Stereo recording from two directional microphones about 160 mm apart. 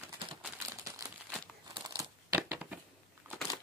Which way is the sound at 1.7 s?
25° right (ahead or behind).